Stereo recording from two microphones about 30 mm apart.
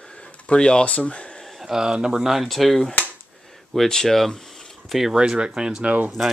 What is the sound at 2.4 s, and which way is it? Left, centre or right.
Speech, centre.